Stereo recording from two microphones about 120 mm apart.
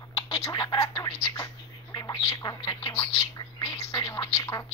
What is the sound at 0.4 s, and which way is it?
Speech, 35° left (ahead or behind).